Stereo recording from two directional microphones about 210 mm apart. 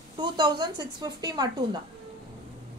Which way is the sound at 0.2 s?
20° right (ahead or behind).